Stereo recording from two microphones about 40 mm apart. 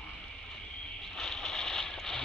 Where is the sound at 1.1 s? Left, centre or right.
Centre.